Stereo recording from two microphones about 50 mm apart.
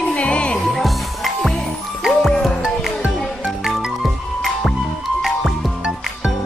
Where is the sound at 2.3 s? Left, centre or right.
Centre.